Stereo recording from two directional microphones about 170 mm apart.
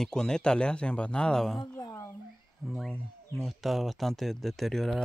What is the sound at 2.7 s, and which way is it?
Speech, centre (ahead or behind).